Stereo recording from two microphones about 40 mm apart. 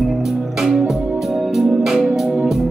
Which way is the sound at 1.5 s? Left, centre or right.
Centre.